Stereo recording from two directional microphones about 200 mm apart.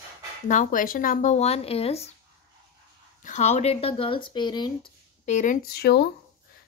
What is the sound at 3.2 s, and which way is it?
Speech, 35° left (ahead or behind).